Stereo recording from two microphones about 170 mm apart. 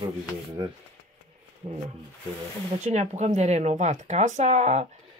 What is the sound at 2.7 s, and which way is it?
Speech, 45° right (ahead or behind).